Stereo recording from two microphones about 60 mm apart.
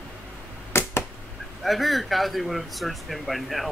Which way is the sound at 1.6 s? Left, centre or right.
Centre.